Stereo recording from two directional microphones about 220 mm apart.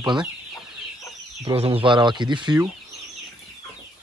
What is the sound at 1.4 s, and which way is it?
Speech, 25° right (ahead or behind).